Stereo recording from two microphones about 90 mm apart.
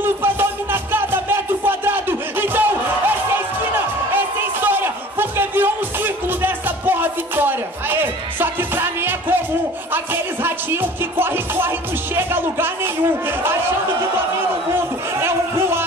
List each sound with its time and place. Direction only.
0.0 s music: 25° right (ahead or behind)
4.6 s music: 25° right (ahead or behind)
15.2 s a sound: 30° right (ahead or behind)